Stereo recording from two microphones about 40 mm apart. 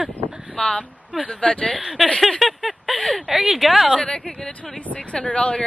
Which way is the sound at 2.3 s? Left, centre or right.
Centre.